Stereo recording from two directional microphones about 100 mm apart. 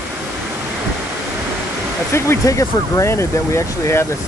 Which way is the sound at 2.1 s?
30° left (ahead or behind).